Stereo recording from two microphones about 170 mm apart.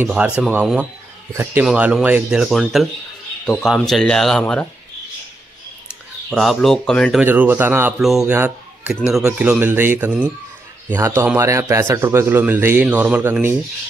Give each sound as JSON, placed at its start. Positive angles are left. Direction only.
{"t": 0.0, "sound": "a man's voice", "side_deg": -10}
{"t": 6.3, "sound": "speech", "side_deg": 0}
{"t": 7.2, "sound": "a man's voice", "side_deg": -10}
{"t": 8.0, "sound": "a man's voice", "side_deg": 0}